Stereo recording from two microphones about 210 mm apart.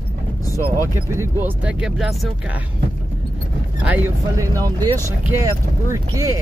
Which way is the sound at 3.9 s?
10° right (ahead or behind).